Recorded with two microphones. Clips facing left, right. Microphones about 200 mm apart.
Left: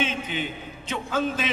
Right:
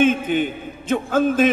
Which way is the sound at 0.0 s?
50° right (ahead or behind).